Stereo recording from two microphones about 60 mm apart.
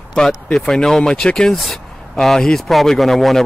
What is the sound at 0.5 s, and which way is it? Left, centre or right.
Speech, centre.